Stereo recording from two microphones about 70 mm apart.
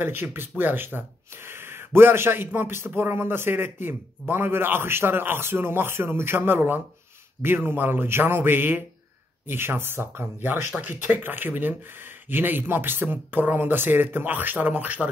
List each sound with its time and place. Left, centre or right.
0.0 s speech: right